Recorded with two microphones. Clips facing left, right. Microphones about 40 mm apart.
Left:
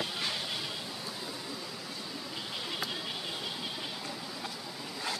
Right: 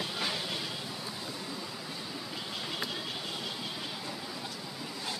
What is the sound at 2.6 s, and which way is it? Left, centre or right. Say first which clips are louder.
Vehicle: even; centre.